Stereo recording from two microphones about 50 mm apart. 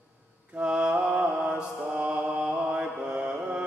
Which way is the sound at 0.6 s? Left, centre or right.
Right.